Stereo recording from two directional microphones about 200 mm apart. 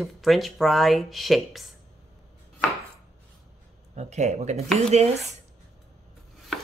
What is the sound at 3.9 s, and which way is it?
Speech, 35° right (ahead or behind).